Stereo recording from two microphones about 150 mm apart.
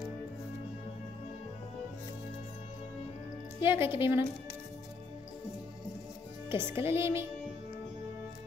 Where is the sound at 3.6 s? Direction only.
15° right (ahead or behind).